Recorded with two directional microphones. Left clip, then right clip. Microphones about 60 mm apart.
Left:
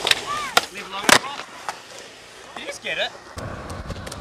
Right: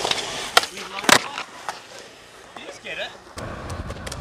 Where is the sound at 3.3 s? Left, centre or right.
Centre.